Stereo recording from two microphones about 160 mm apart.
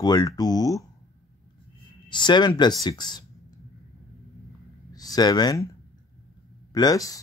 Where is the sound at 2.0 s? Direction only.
30° left (ahead or behind).